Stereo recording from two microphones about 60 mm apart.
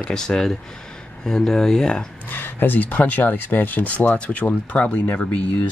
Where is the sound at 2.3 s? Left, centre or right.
Left.